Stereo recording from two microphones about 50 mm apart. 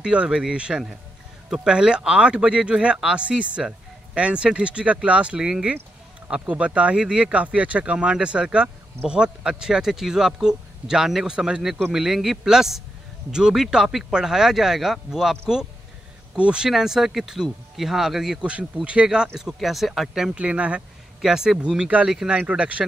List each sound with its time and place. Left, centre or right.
0.0 s speech: centre
16.3 s speech: centre
18.4 s speech: right
19.0 s speech: centre
20.3 s speech: right
21.2 s speech: centre
21.5 s speech: right